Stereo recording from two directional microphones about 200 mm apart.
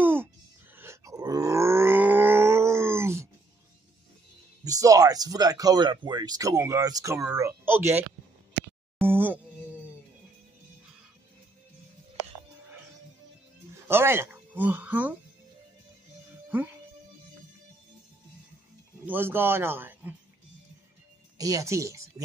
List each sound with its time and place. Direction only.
0.0 s a sound: 10° right (ahead or behind)
0.7 s groan: 15° right (ahead or behind)
4.6 s speech: 15° right (ahead or behind)
9.0 s music: 10° right (ahead or behind)
13.8 s a sound: 10° right (ahead or behind)
19.0 s a man's voice: 10° right (ahead or behind)
21.4 s speech: 15° right (ahead or behind)